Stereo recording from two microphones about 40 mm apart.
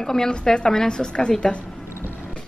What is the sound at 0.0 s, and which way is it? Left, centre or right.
A woman's voice, centre.